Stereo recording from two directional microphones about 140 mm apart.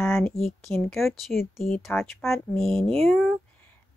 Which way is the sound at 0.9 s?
Centre (ahead or behind).